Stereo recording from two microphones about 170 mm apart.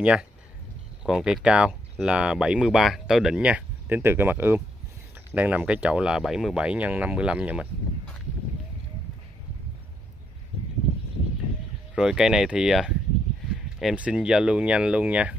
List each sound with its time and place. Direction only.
0.0 s speech: 5° right (ahead or behind)
11.9 s speech: 5° right (ahead or behind)